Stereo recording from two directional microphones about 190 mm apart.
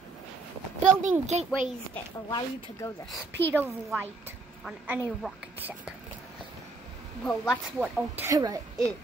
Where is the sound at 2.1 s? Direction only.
20° left (ahead or behind).